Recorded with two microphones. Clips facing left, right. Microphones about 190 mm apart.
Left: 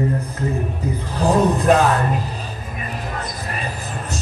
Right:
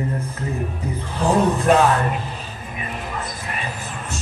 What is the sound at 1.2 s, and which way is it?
Music, 35° left (ahead or behind).